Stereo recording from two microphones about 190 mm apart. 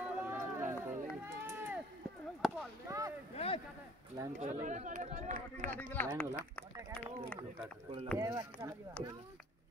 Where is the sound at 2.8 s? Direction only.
15° right (ahead or behind).